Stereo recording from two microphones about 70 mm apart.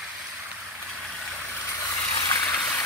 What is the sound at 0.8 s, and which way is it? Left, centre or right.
Vehicle, centre.